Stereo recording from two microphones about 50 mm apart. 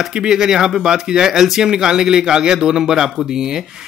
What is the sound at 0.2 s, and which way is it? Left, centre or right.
Speech, centre.